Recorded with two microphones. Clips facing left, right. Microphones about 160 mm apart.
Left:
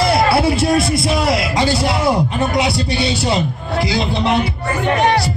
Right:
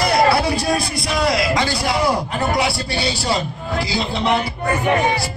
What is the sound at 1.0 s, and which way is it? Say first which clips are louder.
A man's voice: left 2 dB; 25° left (ahead or behind).